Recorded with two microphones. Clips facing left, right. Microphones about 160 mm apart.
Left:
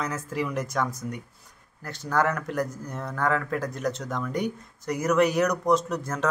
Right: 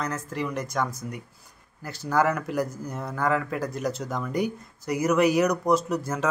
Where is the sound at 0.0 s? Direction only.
Centre (ahead or behind).